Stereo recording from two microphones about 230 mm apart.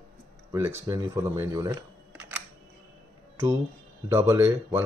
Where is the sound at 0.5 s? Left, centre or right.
Centre.